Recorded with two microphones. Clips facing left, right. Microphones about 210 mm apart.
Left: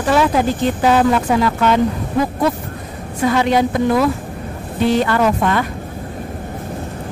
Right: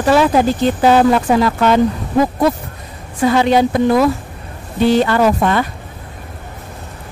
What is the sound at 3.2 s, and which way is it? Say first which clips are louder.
Speech: right 3 dB; 30° right (ahead or behind).